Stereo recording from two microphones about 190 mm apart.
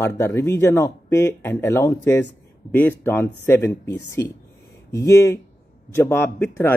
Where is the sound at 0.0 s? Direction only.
15° left (ahead or behind).